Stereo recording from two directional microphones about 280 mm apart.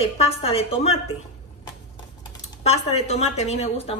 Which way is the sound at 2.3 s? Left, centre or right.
Left.